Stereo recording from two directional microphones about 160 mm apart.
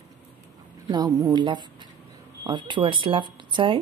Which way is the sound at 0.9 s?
25° right (ahead or behind).